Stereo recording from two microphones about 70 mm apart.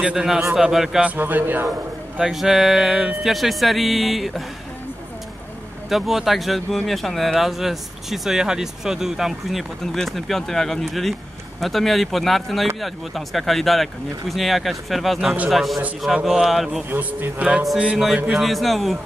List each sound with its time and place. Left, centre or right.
0.0 s a man's voice: centre
1.1 s a man's voice: right
1.7 s speech: centre
5.9 s speech: centre
16.9 s a man's voice: right
17.9 s speech: centre